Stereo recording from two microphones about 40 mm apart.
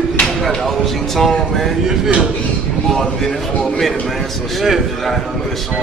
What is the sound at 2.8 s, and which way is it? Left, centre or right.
A man's voice, centre.